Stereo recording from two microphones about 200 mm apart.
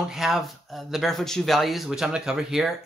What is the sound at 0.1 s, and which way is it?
Speech, centre (ahead or behind).